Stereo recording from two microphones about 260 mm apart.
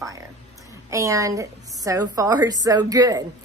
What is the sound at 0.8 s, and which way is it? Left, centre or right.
A woman's voice, centre.